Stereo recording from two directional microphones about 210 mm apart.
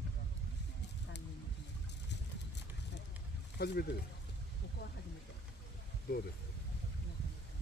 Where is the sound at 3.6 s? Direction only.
50° left (ahead or behind).